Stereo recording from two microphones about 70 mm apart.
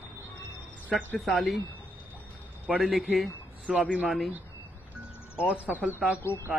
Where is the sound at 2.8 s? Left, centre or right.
Centre.